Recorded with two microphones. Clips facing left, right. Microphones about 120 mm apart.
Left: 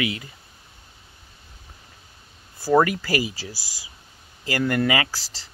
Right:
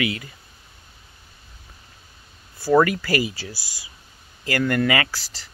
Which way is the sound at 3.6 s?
90° left.